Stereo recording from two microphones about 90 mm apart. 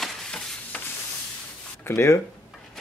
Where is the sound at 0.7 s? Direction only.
15° left (ahead or behind).